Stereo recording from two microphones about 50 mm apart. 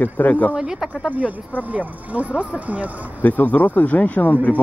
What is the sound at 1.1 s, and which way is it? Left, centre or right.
Speech, right.